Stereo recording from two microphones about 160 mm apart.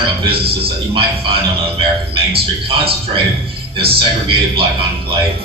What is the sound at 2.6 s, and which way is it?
A man's voice, 35° right (ahead or behind).